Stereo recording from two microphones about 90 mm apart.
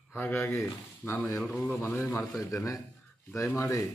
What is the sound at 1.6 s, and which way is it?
Speech, 20° left (ahead or behind).